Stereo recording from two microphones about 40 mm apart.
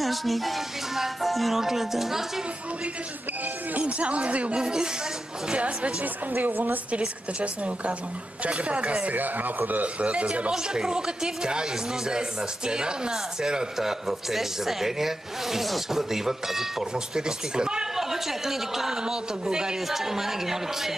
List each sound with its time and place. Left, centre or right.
0.0 s speech: centre
3.7 s a woman's voice: right
4.6 s speech: centre
6.3 s speech: right
6.9 s a woman's voice: right
9.1 s speech: right
9.9 s a woman's voice: right
10.5 s speech: centre
16.9 s speech: centre
17.9 s speech: centre
19.9 s speech: centre